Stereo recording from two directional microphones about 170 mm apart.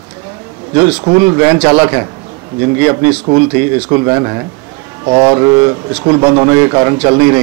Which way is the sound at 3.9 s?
25° right (ahead or behind).